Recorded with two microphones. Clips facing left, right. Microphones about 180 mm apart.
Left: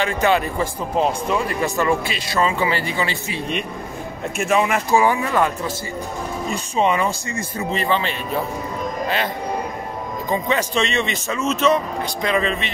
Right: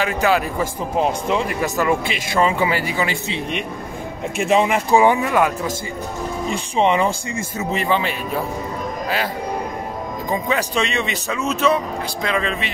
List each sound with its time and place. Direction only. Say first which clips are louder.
0.0 s speech: even; 5° right (ahead or behind)
6.5 s speech: right 2 dB; 20° right (ahead or behind)
10.3 s speech: left 1 dB; 10° right (ahead or behind)
12.2 s speech: left 2 dB; centre (ahead or behind)